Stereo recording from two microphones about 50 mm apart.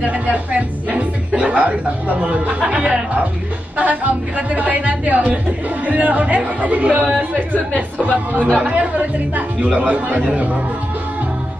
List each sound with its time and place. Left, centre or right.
0.0 s speech: right
8.5 s speech: centre
8.7 s speech: right